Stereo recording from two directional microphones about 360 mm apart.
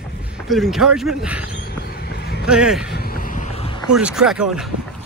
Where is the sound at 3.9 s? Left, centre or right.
Centre.